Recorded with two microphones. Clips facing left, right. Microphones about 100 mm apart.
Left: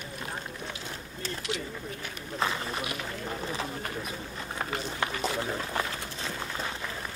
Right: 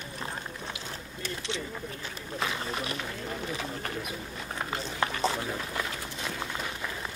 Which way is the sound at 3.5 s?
35° left (ahead or behind).